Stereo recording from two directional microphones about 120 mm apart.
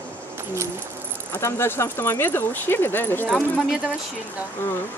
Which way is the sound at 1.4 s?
20° left (ahead or behind).